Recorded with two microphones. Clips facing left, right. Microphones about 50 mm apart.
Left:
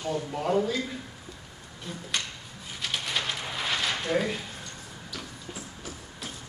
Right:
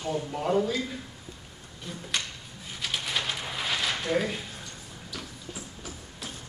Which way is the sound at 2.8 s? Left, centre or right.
Centre.